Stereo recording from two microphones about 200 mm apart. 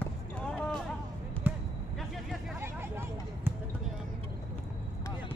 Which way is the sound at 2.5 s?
10° right (ahead or behind).